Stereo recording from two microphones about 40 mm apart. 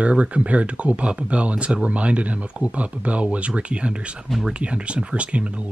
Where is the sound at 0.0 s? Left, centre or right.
Right.